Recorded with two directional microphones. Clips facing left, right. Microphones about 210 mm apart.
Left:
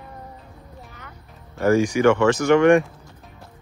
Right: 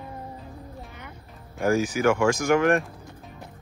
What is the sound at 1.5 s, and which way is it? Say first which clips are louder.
Speech: left 5 dB; 10° right (ahead or behind).